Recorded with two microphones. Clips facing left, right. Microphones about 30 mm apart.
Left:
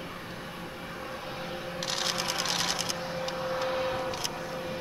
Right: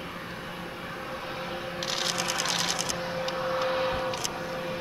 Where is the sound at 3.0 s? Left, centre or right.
Centre.